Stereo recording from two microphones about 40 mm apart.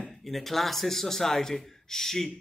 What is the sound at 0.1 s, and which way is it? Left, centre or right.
Speech, centre.